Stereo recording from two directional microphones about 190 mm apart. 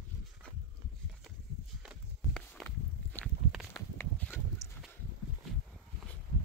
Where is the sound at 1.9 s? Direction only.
Centre (ahead or behind).